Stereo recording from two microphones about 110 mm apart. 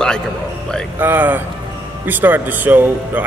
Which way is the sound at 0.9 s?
20° right (ahead or behind).